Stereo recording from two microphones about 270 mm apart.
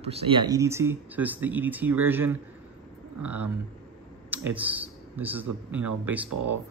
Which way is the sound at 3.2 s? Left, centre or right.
Right.